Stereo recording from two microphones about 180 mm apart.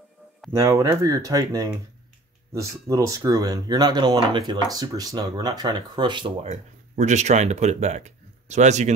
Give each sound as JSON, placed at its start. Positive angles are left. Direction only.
{"t": 0.5, "sound": "speech", "side_deg": -15}
{"t": 6.5, "sound": "speech", "side_deg": -40}